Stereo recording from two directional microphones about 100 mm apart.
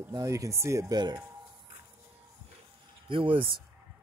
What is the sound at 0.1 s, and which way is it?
Speech, 35° right (ahead or behind).